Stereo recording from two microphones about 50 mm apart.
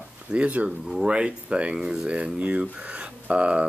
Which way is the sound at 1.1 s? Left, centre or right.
Right.